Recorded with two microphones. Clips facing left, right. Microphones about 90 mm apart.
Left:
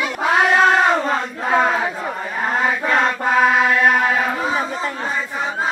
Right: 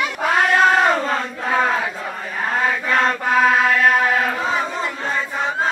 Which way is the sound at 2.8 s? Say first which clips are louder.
Left 1 dB; 15° left (ahead or behind).